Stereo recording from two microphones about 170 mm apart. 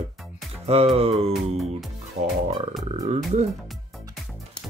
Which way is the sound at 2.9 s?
40° right (ahead or behind).